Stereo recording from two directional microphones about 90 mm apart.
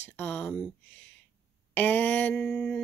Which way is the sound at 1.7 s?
20° left (ahead or behind).